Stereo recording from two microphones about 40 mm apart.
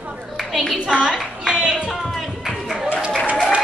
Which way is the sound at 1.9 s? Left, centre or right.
Centre.